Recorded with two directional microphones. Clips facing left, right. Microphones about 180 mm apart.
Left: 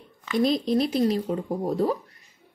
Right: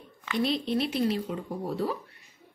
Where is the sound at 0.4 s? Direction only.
40° left (ahead or behind).